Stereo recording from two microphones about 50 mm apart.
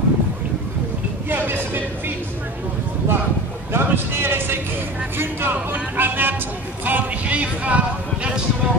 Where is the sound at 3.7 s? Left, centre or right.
Right.